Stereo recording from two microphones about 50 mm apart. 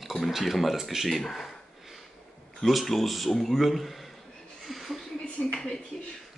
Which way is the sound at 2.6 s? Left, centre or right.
Centre.